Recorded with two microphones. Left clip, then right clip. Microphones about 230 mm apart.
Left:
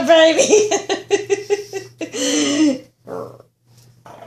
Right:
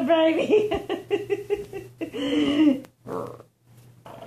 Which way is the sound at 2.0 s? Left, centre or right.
Left.